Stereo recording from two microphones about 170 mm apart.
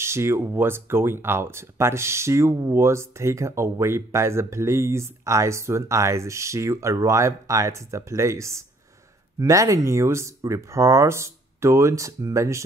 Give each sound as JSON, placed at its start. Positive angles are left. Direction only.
{"t": 0.0, "sound": "speech", "side_deg": -15}